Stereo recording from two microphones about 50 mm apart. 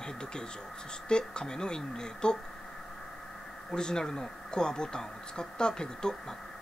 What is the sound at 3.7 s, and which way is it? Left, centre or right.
Speech, centre.